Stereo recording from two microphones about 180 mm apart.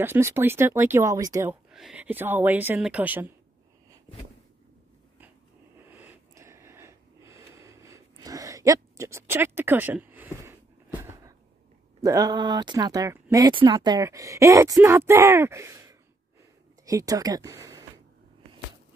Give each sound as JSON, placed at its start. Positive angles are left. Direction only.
{"t": 0.0, "sound": "speech", "side_deg": -15}
{"t": 1.7, "sound": "speech", "side_deg": -5}
{"t": 5.9, "sound": "a sound", "side_deg": -10}
{"t": 12.0, "sound": "speech", "side_deg": -20}